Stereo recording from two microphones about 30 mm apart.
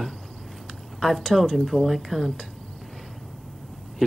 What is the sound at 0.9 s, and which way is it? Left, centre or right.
Speech, centre.